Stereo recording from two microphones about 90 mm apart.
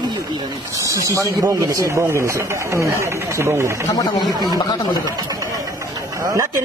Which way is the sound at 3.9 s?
50° left (ahead or behind).